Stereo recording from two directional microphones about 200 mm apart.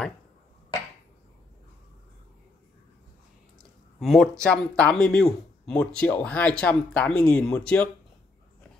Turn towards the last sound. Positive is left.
turn(degrees=5)  # may be behind; listen again after turning